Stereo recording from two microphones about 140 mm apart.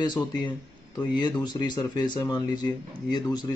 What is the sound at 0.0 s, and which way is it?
Speech, 30° left (ahead or behind).